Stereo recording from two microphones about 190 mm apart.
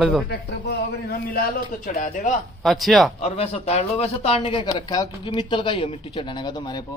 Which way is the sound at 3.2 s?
30° left (ahead or behind).